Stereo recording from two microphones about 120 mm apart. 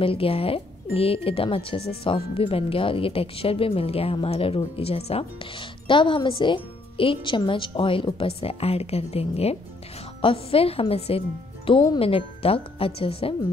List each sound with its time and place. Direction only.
0.0 s speech: 50° left (ahead or behind)